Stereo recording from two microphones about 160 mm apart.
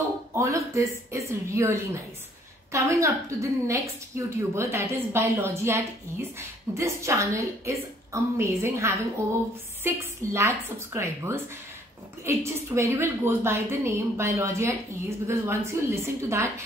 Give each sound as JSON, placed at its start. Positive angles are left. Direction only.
{"t": 0.3, "sound": "a woman's voice", "side_deg": -20}